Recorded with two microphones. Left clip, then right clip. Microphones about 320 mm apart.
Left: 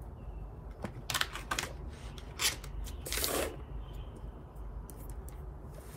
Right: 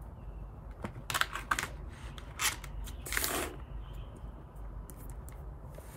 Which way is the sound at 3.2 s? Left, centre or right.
Centre.